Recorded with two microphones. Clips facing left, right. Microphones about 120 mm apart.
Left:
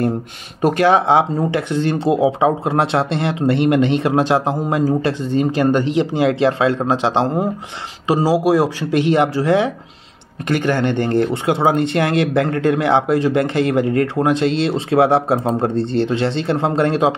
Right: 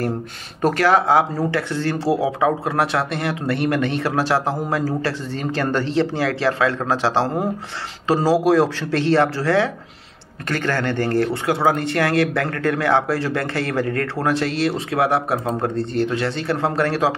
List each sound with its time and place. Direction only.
0.6 s speech: 15° left (ahead or behind)